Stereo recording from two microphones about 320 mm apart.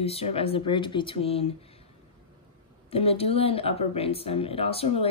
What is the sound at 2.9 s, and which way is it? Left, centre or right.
Speech, centre.